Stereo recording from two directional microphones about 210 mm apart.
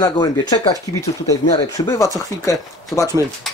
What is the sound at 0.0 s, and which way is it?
Speech, 20° left (ahead or behind).